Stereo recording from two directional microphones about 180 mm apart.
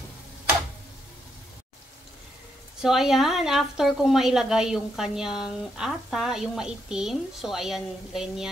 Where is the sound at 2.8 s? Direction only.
Centre (ahead or behind).